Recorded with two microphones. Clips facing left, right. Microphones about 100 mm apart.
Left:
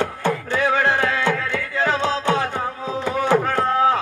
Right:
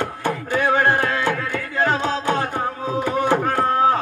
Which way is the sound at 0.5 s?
50° right (ahead or behind).